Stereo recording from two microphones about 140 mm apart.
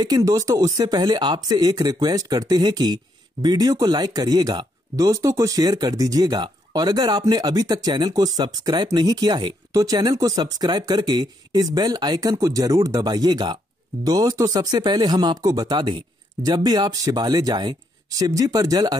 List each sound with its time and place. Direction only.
0.0 s speech: 25° right (ahead or behind)